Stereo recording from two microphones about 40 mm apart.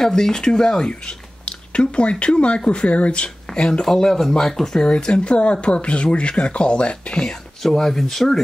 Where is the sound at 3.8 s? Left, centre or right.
Centre.